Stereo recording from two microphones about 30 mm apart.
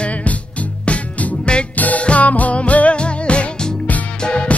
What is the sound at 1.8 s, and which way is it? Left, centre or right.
Music, left.